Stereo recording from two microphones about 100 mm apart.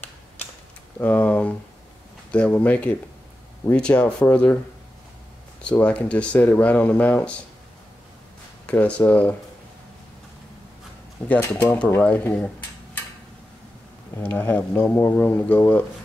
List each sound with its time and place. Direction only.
0.9 s speech: 20° left (ahead or behind)
2.5 s speech: 15° left (ahead or behind)
5.6 s speech: 10° left (ahead or behind)
8.6 s speech: 15° left (ahead or behind)
11.2 s speech: 15° left (ahead or behind)
14.2 s speech: 20° left (ahead or behind)